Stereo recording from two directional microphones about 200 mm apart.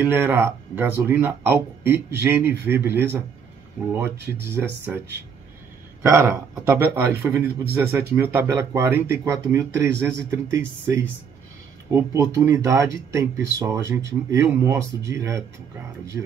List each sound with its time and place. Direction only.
0.0 s speech: 10° right (ahead or behind)
6.0 s speech: 10° right (ahead or behind)